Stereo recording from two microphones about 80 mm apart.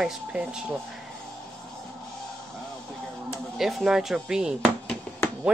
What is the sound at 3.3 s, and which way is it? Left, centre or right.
A man's voice, centre.